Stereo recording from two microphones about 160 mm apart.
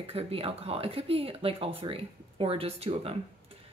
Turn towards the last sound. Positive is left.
turn(degrees=-35)  # may be behind; listen again after turning